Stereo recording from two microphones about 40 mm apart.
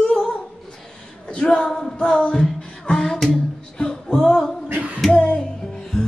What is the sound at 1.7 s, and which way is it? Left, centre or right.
Music, centre.